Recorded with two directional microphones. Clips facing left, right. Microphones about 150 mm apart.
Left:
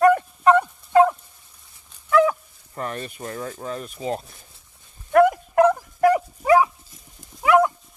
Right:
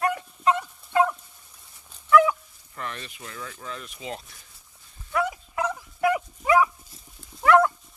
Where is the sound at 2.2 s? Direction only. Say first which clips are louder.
Left 4 dB; 40° left (ahead or behind).